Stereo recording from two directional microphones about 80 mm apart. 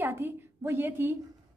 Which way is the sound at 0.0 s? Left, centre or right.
Right.